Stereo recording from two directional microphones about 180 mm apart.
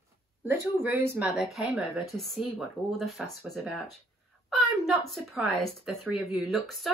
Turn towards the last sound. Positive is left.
turn(degrees=0)  # may be behind; listen again after turning